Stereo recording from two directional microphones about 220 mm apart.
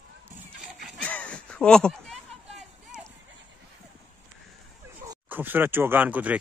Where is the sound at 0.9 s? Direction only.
5° left (ahead or behind).